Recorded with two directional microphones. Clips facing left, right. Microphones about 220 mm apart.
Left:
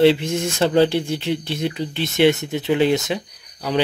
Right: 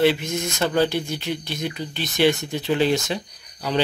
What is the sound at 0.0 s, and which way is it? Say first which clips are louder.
Speech: left 4 dB; 30° left (ahead or behind).